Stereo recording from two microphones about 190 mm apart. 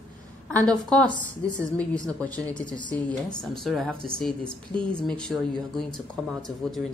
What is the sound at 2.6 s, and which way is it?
Speech, 25° left (ahead or behind).